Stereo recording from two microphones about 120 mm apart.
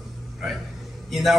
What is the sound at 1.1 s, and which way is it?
Speech, centre (ahead or behind).